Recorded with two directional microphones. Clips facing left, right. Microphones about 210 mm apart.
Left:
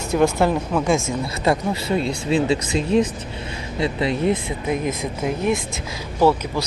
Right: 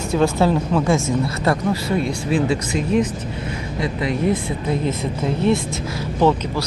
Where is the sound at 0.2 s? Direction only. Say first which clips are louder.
Even; 10° left (ahead or behind).